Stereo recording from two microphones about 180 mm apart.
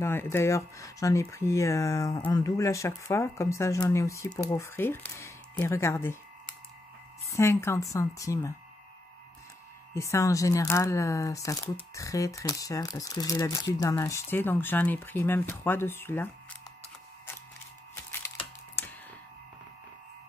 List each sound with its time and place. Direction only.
0.0 s speech: 10° left (ahead or behind)
7.2 s speech: 15° left (ahead or behind)
9.9 s speech: 15° left (ahead or behind)
18.8 s a sound: 10° left (ahead or behind)